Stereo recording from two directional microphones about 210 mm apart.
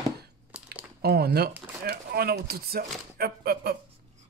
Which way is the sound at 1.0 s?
45° right (ahead or behind).